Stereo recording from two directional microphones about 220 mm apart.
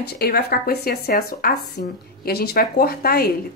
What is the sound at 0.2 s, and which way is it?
A woman's voice, 45° left (ahead or behind).